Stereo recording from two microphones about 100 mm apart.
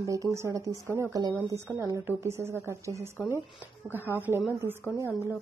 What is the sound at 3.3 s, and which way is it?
Speech, 20° left (ahead or behind).